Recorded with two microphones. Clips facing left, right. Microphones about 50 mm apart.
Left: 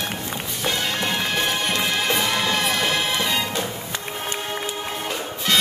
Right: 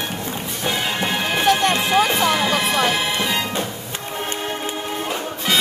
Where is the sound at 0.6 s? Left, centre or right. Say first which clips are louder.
Right 2 dB; centre.